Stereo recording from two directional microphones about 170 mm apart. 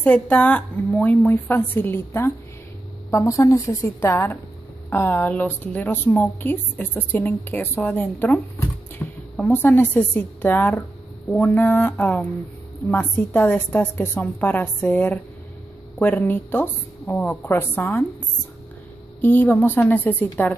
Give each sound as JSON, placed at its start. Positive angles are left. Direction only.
{"t": 0.0, "sound": "a woman's voice", "side_deg": 10}
{"t": 19.2, "sound": "a woman's voice", "side_deg": 10}